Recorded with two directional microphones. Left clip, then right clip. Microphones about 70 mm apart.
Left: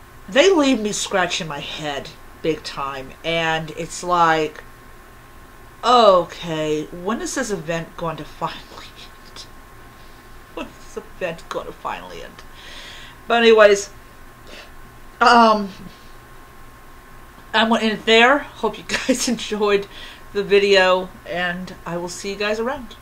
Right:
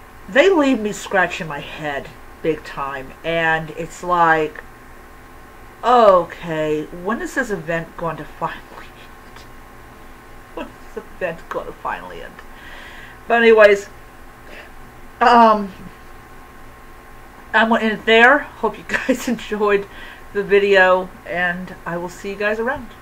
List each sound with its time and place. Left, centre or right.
0.3 s speech: left
5.8 s speech: left
10.5 s a sound: centre
11.4 s speech: left
13.3 s speech: left
15.1 s speech: left
17.5 s speech: left